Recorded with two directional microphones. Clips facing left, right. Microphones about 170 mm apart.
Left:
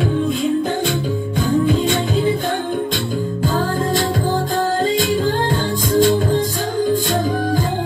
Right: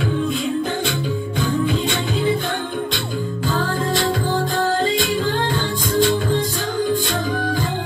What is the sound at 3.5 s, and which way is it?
Music, 45° left (ahead or behind).